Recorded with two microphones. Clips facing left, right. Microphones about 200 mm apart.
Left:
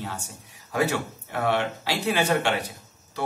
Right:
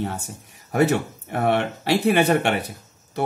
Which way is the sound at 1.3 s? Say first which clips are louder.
Right 4 dB; 60° right (ahead or behind).